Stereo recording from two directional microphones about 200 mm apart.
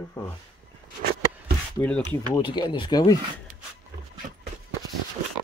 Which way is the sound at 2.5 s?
20° left (ahead or behind).